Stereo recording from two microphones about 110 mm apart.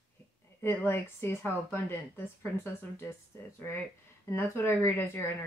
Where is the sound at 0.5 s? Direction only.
20° left (ahead or behind).